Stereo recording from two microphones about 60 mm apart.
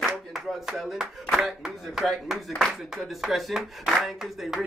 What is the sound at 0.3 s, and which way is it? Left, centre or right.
Speech, centre.